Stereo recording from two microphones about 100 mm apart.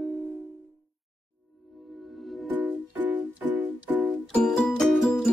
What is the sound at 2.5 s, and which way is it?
Music, 15° right (ahead or behind).